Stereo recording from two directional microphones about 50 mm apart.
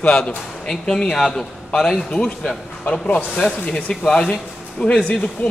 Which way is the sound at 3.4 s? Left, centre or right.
Centre.